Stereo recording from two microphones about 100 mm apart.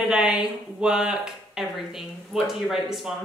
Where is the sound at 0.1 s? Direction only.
10° right (ahead or behind).